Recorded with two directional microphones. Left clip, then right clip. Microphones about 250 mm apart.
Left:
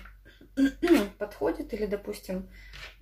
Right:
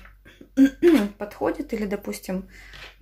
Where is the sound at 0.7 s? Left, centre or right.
Right.